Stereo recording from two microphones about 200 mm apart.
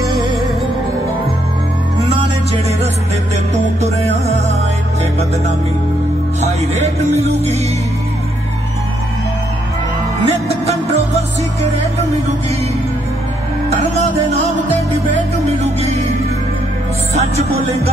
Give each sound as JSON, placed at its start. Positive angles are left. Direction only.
{"t": 0.1, "sound": "music", "side_deg": 0}
{"t": 2.0, "sound": "music", "side_deg": -30}
{"t": 3.5, "sound": "music", "side_deg": -35}
{"t": 6.4, "sound": "music", "side_deg": -30}
{"t": 10.2, "sound": "music", "side_deg": -30}
{"t": 15.4, "sound": "music", "side_deg": -35}
{"t": 17.1, "sound": "music", "side_deg": -30}